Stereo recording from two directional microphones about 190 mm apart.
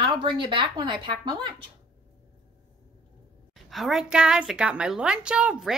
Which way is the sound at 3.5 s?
Centre (ahead or behind).